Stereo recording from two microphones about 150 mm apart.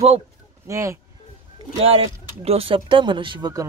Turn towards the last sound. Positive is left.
turn(degrees=-30)  # may be behind; listen again after turning